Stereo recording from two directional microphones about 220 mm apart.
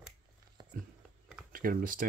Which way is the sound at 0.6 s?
20° right (ahead or behind).